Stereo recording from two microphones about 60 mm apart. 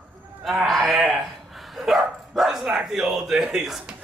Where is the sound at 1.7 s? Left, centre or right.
Centre.